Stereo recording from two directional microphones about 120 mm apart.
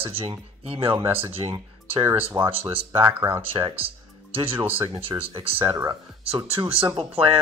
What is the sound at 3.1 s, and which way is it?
Speech, 15° right (ahead or behind).